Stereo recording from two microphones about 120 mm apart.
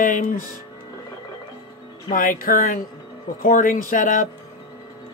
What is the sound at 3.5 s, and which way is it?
Speech, 90° left.